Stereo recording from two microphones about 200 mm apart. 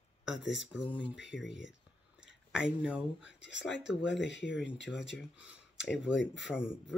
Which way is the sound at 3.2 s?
65° left (ahead or behind).